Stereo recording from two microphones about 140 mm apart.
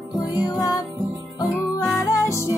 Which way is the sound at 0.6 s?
25° left (ahead or behind).